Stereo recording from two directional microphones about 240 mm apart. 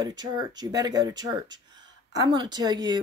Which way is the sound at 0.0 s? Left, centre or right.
Centre.